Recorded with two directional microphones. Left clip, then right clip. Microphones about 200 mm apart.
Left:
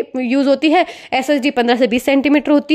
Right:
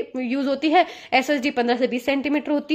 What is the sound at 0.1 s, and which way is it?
A woman's voice, 35° left (ahead or behind).